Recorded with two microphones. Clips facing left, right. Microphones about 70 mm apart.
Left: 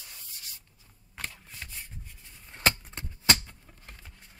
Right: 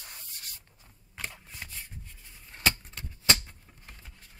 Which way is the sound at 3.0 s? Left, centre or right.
Left.